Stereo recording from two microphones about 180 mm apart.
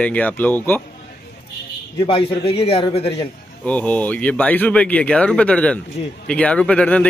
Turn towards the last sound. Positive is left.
turn(degrees=5)  # may be behind; listen again after turning